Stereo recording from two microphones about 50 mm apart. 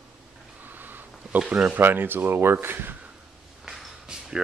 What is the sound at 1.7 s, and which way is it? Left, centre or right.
Speech, right.